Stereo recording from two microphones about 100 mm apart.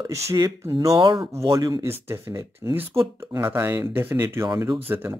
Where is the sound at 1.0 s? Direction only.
50° right (ahead or behind).